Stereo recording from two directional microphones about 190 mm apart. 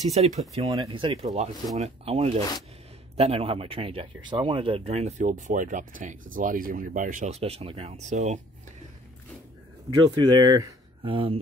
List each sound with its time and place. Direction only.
0.1 s speech: 35° right (ahead or behind)
0.7 s speech: 25° right (ahead or behind)
9.8 s speech: 20° right (ahead or behind)